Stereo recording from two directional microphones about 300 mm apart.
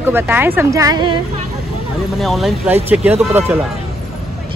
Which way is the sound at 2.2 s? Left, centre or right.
Centre.